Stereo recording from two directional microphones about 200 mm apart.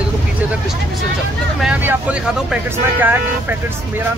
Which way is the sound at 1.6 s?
5° right (ahead or behind).